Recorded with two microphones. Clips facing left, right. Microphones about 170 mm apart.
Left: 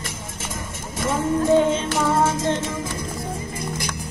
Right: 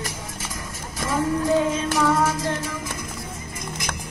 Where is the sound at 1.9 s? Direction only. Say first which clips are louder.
Left 1 dB; 25° left (ahead or behind).